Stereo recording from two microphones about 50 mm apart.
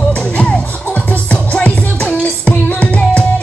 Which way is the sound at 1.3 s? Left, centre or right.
Left.